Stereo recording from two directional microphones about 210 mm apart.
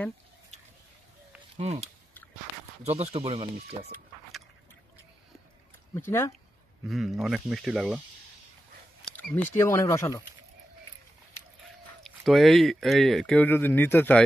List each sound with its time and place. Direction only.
1.6 s speech: 30° right (ahead or behind)
5.9 s speech: 10° left (ahead or behind)
6.9 s speech: centre (ahead or behind)
9.1 s speech: 10° left (ahead or behind)
12.0 s speech: centre (ahead or behind)